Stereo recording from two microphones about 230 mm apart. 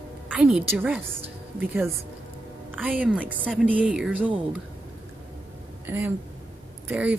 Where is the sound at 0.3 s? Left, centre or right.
Centre.